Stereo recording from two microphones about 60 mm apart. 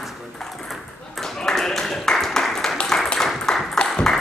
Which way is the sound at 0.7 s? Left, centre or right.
Centre.